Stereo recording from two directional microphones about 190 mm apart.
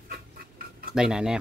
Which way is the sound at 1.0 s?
5° right (ahead or behind).